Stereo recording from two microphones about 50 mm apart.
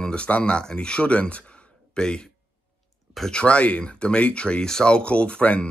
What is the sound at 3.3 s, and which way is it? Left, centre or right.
Speech, left.